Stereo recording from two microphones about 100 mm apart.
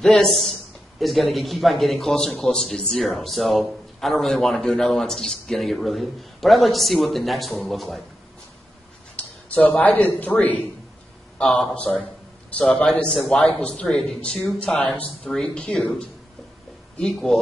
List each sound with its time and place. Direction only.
0.0 s speech: 5° left (ahead or behind)
9.1 s a man's voice: 15° left (ahead or behind)
14.8 s speech: 15° left (ahead or behind)
17.0 s speech: 5° left (ahead or behind)